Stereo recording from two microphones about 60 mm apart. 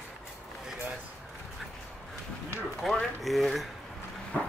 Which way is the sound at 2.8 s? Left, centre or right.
Centre.